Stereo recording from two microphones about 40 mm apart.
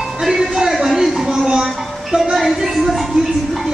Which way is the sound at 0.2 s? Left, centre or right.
Centre.